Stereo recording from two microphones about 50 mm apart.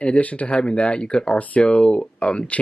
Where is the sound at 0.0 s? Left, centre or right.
Left.